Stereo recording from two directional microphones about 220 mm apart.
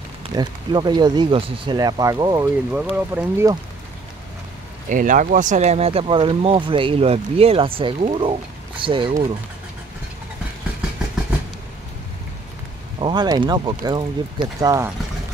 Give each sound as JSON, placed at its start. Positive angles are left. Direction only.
{"t": 0.2, "sound": "speech", "side_deg": -20}
{"t": 4.8, "sound": "speech", "side_deg": -35}
{"t": 13.0, "sound": "speech", "side_deg": -20}